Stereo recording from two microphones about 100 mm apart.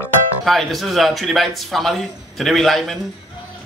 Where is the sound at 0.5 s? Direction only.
Centre (ahead or behind).